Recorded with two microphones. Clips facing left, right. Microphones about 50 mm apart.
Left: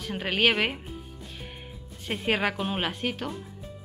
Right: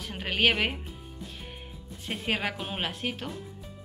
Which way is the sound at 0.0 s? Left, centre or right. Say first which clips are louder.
Left 2 dB; centre.